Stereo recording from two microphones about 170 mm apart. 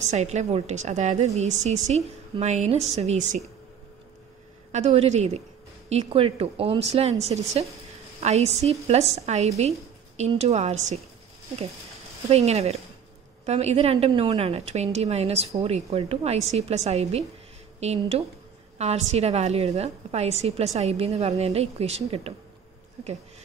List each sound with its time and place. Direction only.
0.0 s a woman's voice: 45° right (ahead or behind)
4.7 s a woman's voice: 40° right (ahead or behind)
12.3 s a woman's voice: 40° right (ahead or behind)